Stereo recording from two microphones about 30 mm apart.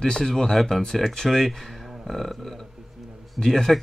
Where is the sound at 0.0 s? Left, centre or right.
Centre.